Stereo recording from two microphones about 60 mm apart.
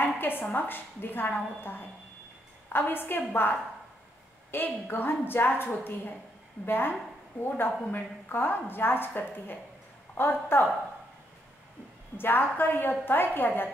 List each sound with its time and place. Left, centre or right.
0.0 s a woman's voice: left
12.2 s a woman's voice: left